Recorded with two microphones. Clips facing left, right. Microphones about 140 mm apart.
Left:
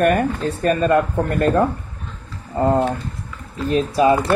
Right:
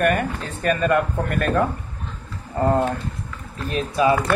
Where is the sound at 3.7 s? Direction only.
30° left (ahead or behind).